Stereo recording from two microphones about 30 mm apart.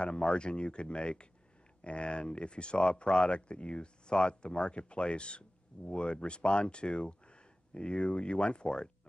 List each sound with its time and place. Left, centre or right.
0.0 s speech: left